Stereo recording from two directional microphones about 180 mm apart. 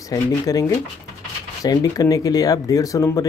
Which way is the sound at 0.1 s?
20° left (ahead or behind).